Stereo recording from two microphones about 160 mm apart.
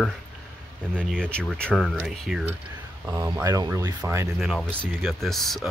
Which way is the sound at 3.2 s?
20° right (ahead or behind).